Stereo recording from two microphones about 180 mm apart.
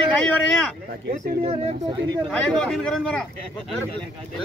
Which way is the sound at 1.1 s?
45° right (ahead or behind).